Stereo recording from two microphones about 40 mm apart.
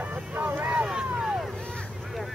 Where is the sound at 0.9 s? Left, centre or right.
Centre.